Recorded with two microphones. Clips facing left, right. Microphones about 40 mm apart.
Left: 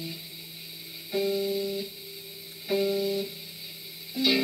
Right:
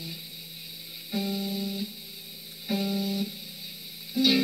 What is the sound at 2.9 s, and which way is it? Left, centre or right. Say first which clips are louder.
Music: left 2 dB; centre.